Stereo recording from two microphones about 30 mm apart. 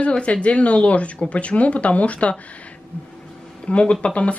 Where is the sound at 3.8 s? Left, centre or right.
Left.